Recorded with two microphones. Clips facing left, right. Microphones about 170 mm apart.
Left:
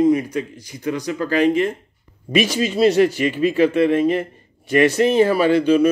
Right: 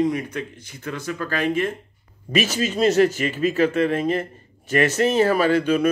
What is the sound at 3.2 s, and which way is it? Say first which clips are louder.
Speech: left 4 dB; 40° right (ahead or behind).